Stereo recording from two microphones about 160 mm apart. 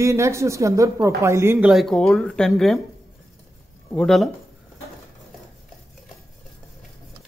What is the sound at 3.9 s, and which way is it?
Speech, centre (ahead or behind).